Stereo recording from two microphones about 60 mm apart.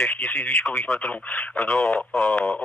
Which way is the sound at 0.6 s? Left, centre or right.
Left.